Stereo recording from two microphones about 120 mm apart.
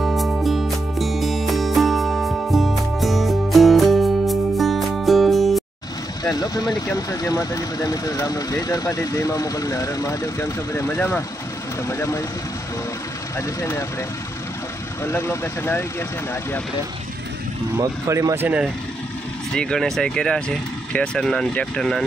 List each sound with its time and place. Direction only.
0.0 s music: centre (ahead or behind)
6.3 s speech: 35° left (ahead or behind)
13.6 s speech: 20° left (ahead or behind)
15.0 s speech: 20° left (ahead or behind)
17.7 s speech: 25° right (ahead or behind)
19.5 s speech: 5° left (ahead or behind)